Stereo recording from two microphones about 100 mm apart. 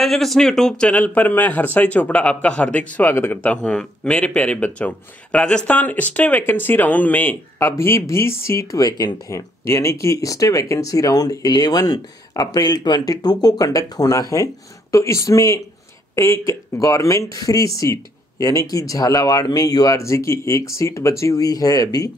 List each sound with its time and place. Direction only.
0.0 s speech: 5° left (ahead or behind); by 3.5 s 20° left (ahead or behind)
3.6 s speech: 10° left (ahead or behind)
7.5 s speech: 25° left (ahead or behind)